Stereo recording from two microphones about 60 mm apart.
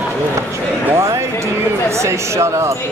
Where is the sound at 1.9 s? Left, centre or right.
Right.